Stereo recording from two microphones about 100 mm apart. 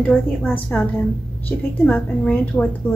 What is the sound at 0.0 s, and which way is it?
A woman's voice, 15° left (ahead or behind).